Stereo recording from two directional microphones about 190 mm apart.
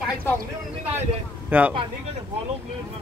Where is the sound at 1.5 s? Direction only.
10° right (ahead or behind).